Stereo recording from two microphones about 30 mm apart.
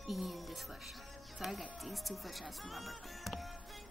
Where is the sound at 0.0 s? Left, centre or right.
Centre.